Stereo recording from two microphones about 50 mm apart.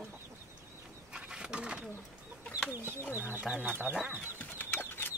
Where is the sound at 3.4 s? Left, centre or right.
Right.